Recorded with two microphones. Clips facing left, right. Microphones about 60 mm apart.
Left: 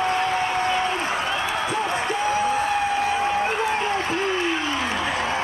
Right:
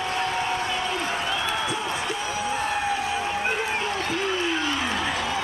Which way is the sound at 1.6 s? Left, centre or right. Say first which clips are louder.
Left 4 dB; left.